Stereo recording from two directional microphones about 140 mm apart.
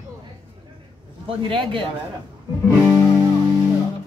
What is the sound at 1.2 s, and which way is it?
Speech, 40° right (ahead or behind).